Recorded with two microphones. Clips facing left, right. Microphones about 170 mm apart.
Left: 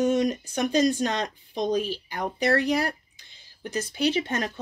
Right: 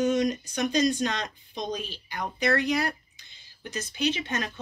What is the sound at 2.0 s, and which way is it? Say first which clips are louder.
Speech: left 2 dB; 35° left (ahead or behind).